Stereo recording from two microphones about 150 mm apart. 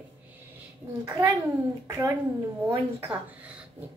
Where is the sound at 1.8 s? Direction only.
20° right (ahead or behind).